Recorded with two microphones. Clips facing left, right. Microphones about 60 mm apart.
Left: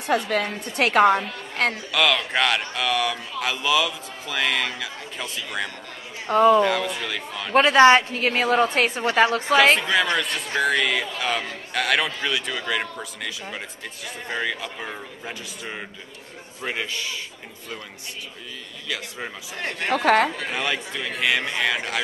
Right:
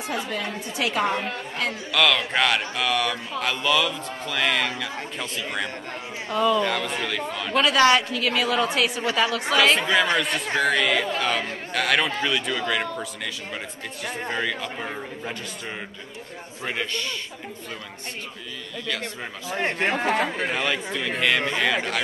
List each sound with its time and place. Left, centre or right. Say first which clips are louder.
0.0 s a woman's voice: left 6 dB; left
1.9 s speech: right 5 dB; centre
6.2 s a woman's voice: left 6 dB; left
6.6 s speech: left 3 dB; centre
7.5 s a woman's voice: left 4 dB; left
9.8 s speech: right 1 dB; centre
16.6 s speech: even; centre
19.5 s speech: right 2 dB; right
20.5 s speech: right 1 dB; centre